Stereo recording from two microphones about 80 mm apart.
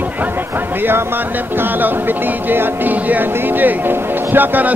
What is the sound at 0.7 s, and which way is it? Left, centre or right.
Speech, right.